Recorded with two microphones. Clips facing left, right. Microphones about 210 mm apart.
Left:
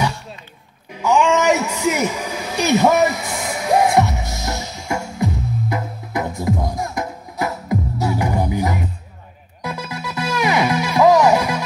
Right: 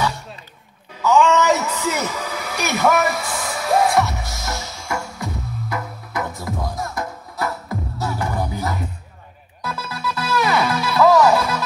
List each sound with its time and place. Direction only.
1.0 s a woman's voice: 15° left (ahead or behind)
2.9 s music: 20° left (ahead or behind)